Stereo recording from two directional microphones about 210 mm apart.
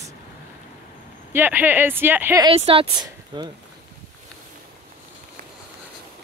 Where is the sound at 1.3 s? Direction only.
10° right (ahead or behind).